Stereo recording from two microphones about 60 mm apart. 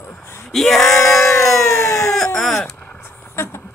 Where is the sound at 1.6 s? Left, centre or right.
Left.